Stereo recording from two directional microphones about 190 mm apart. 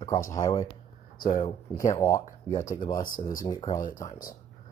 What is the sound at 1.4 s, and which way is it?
Speech, 15° left (ahead or behind).